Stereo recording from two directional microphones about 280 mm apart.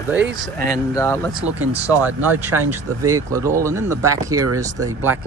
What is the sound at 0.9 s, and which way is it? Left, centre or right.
A man's voice, centre.